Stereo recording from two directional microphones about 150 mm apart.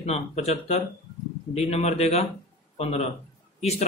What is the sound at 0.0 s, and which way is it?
A man's voice, 45° left (ahead or behind).